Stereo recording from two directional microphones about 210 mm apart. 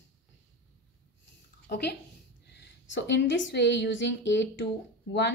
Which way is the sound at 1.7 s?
50° left (ahead or behind).